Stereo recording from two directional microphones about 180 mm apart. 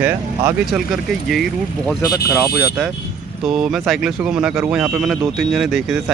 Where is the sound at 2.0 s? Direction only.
15° left (ahead or behind).